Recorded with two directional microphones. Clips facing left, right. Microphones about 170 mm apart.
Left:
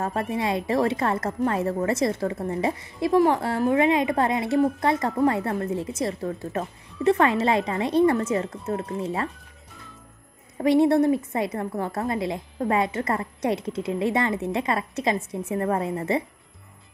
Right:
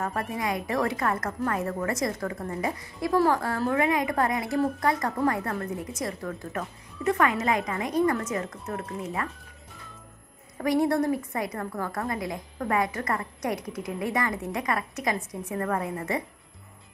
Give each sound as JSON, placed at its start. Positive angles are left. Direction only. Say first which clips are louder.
{"t": 0.0, "sound": "a woman's voice", "louder": "left 4 dB", "side_deg": 25}
{"t": 10.6, "sound": "a woman's voice", "louder": "left 5 dB", "side_deg": 25}